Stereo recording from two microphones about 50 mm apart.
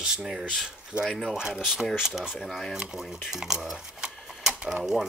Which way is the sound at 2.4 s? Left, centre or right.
Centre.